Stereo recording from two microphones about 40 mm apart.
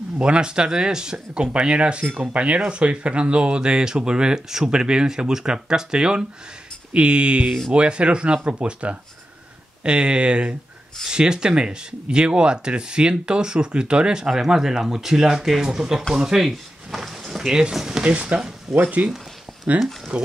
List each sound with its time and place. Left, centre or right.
0.2 s speech: right
14.3 s speech: centre
18.0 s speech: right
18.7 s speech: centre
20.1 s speech: right